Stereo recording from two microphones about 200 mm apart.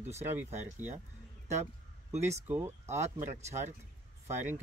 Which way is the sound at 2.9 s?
35° right (ahead or behind).